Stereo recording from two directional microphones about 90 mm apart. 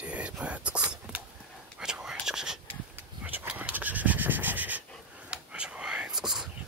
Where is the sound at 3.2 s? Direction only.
15° right (ahead or behind).